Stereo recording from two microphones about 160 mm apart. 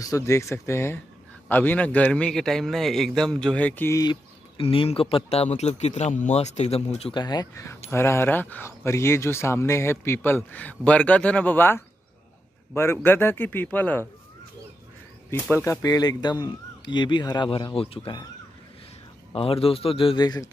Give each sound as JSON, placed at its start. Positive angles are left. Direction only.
{"t": 0.0, "sound": "speech", "side_deg": 20}
{"t": 4.0, "sound": "speech", "side_deg": 30}
{"t": 7.2, "sound": "speech", "side_deg": 25}
{"t": 15.5, "sound": "speech", "side_deg": 15}
{"t": 19.3, "sound": "speech", "side_deg": 35}